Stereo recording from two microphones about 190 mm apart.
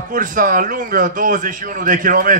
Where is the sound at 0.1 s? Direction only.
45° right (ahead or behind).